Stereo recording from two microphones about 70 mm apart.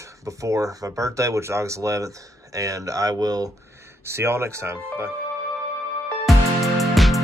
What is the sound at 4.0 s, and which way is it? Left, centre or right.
Speech, right.